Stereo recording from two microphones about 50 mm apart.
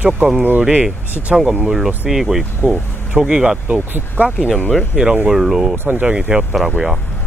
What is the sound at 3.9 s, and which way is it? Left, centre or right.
Speech, right.